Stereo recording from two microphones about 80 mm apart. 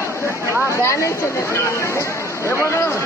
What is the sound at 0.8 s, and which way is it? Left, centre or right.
Speech, left.